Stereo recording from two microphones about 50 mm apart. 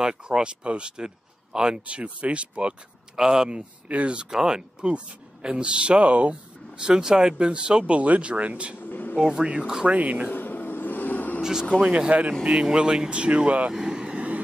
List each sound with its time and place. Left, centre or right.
0.0 s speech: centre
6.8 s speech: centre
8.7 s a sound: left
9.1 s speech: centre
9.8 s speech: right
10.3 s vehicle: left
11.8 s speech: centre
12.1 s speech: right
12.7 s speech: centre
13.7 s vehicle: centre